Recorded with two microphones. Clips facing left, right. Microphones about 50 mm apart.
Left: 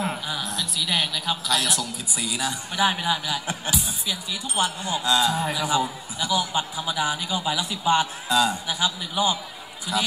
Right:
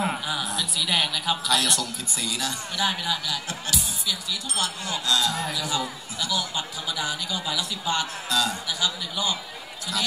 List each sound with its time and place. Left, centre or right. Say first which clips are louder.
0.0 s a man's voice: right 1 dB; centre